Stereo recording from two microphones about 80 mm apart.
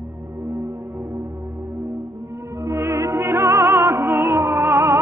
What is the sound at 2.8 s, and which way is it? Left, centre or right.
Music, right.